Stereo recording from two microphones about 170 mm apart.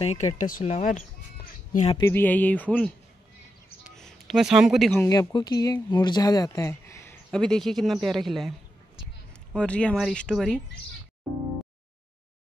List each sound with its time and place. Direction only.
0.0 s speech: 40° left (ahead or behind)
2.0 s speech: 15° left (ahead or behind)
3.9 s speech: centre (ahead or behind)
5.0 s speech: 15° left (ahead or behind)
7.2 s speech: 5° left (ahead or behind)